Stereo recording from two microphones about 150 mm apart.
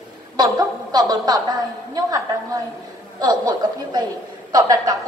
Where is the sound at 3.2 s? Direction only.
30° right (ahead or behind).